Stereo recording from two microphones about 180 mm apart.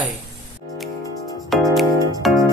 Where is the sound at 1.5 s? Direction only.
Centre (ahead or behind).